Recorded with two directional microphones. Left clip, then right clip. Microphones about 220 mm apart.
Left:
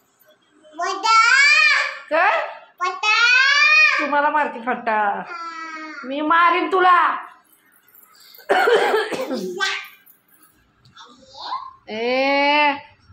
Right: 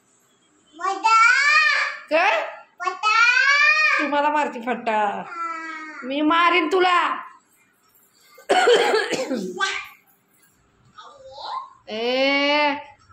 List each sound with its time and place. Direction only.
0.7 s child singing: 5° right (ahead or behind)
2.0 s a sound: 15° right (ahead or behind)
2.8 s babbling: 15° right (ahead or behind)
6.0 s a woman's voice: 15° right (ahead or behind)
8.5 s cough: 15° right (ahead or behind)
11.8 s a sound: 5° right (ahead or behind)